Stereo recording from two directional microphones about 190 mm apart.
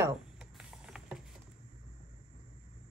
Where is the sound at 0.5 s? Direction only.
Centre (ahead or behind).